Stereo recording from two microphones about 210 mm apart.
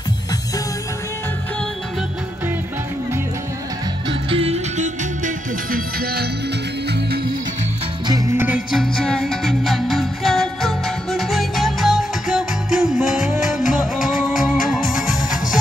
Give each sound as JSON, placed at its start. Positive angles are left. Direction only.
{"t": 4.1, "sound": "music", "side_deg": -25}
{"t": 8.1, "sound": "music", "side_deg": -15}